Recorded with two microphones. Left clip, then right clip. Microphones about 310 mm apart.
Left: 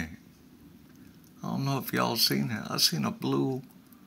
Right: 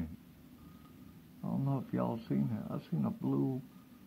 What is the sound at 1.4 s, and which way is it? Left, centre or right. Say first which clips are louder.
Speech: left 6 dB; left.